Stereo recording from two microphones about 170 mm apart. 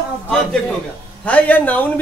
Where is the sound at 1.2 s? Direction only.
10° left (ahead or behind).